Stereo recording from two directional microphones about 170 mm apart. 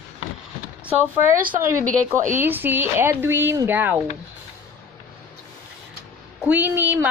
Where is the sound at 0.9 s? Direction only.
50° right (ahead or behind).